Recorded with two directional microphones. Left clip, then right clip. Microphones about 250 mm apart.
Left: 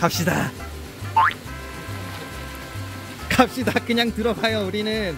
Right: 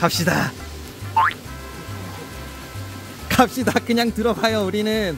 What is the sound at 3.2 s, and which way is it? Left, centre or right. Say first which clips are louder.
Speech: right 2 dB; centre.